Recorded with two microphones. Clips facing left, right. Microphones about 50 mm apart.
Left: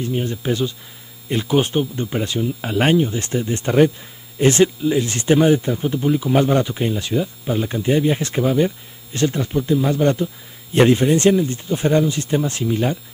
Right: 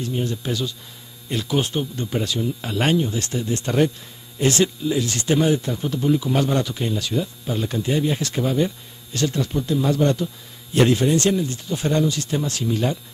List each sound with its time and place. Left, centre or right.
0.0 s speech: left
8.4 s speech: centre